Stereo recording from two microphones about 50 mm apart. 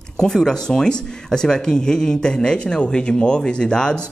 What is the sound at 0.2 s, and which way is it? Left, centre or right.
Speech, centre.